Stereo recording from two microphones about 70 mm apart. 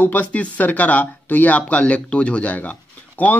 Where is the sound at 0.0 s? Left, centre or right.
Left.